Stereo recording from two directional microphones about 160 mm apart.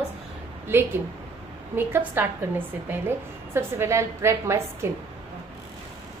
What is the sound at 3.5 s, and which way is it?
A woman's voice, 15° right (ahead or behind).